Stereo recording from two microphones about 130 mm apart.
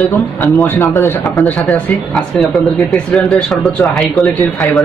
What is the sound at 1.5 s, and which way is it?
Speech, 5° left (ahead or behind).